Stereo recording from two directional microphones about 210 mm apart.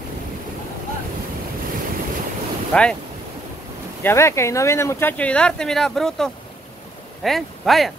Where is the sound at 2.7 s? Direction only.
5° left (ahead or behind).